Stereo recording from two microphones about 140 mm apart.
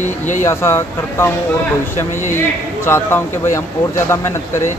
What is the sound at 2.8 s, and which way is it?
Speech, 15° left (ahead or behind).